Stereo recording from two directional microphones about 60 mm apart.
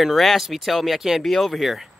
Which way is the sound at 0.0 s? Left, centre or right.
Centre.